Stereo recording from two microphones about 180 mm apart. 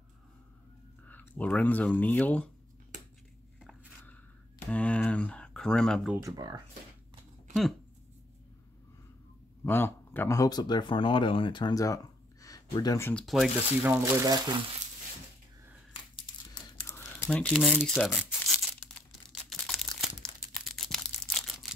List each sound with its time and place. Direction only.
1.0 s speech: 10° left (ahead or behind)
4.0 s a sound: 10° left (ahead or behind)
6.2 s speech: 20° right (ahead or behind)
9.7 s speech: 10° left (ahead or behind)
13.1 s speech: centre (ahead or behind)
13.8 s speech: 15° right (ahead or behind)
16.8 s tearing: 15° left (ahead or behind)
19.6 s crumpling: centre (ahead or behind)